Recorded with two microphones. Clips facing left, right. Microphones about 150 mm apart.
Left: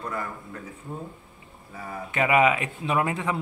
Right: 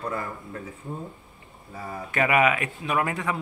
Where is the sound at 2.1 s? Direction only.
20° left (ahead or behind).